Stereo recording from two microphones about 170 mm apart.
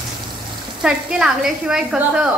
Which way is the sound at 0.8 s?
5° right (ahead or behind).